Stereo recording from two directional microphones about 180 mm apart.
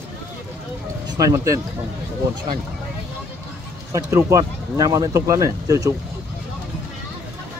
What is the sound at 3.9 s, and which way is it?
Speech, 20° right (ahead or behind).